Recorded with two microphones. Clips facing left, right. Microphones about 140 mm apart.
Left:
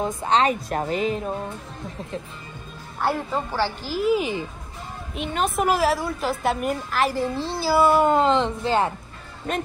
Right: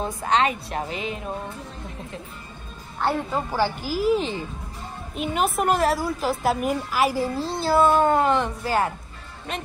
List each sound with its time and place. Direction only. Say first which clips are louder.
0.0 s a woman's voice: left 1 dB; 20° left (ahead or behind)
0.4 s a woman's voice: left 2 dB; 40° left (ahead or behind)
3.0 s a woman's voice: even; centre (ahead or behind)
3.5 s a woman's voice: right 3 dB; 10° right (ahead or behind)
4.2 s speech: left 2 dB; 15° left (ahead or behind)
5.1 s a woman's voice: right 1 dB; 5° right (ahead or behind)
8.1 s a woman's voice: left 1 dB; 20° left (ahead or behind)
9.5 s speech: left 5 dB; 45° left (ahead or behind)